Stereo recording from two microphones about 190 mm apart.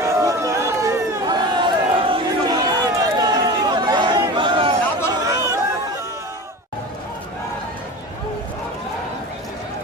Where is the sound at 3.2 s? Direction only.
20° right (ahead or behind).